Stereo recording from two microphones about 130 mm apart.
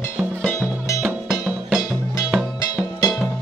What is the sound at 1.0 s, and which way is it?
Music, centre (ahead or behind).